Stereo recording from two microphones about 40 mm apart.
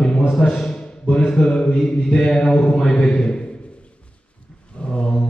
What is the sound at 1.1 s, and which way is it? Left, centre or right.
Mantra, centre.